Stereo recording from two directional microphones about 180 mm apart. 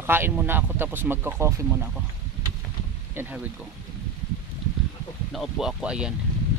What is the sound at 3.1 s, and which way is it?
Speech, 10° right (ahead or behind).